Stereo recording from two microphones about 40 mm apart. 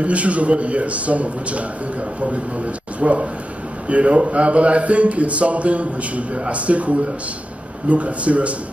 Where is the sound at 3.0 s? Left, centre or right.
Right.